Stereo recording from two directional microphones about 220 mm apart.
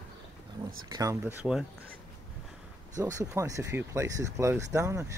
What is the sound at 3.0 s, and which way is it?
Speech, 15° right (ahead or behind).